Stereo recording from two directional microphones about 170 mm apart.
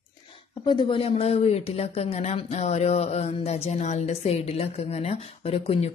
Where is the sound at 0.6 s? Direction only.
30° left (ahead or behind).